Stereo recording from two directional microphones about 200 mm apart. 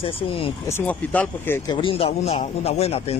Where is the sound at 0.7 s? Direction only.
10° left (ahead or behind).